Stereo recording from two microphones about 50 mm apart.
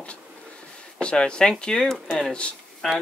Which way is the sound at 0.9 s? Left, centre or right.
Centre.